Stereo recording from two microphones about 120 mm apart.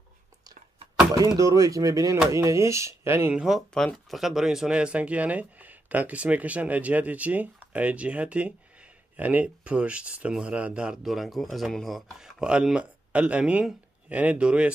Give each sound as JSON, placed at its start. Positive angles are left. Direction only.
{"t": 1.1, "sound": "speech", "side_deg": -30}
{"t": 3.3, "sound": "speech", "side_deg": 0}